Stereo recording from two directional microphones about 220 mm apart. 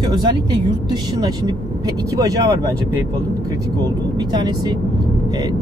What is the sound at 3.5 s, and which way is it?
Speech, 20° right (ahead or behind).